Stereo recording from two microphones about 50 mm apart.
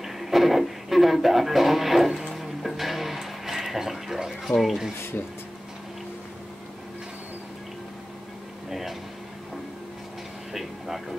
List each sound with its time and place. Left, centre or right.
0.0 s music: centre
4.5 s speech: centre
8.6 s air conditioning: centre
10.5 s a sound: centre